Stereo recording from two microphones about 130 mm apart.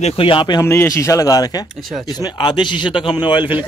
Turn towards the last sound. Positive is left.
turn(degrees=35)  # may be behind; listen again after turning